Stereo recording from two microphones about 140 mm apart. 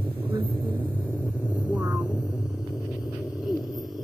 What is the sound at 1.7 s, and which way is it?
Vehicle, 10° right (ahead or behind).